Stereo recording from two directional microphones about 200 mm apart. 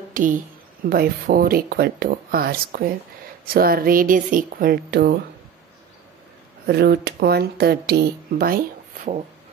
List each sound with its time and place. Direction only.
0.1 s speech: 40° right (ahead or behind)
6.6 s speech: 50° right (ahead or behind)